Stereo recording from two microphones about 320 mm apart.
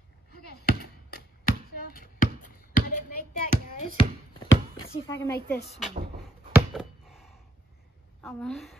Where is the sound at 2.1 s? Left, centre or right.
Left.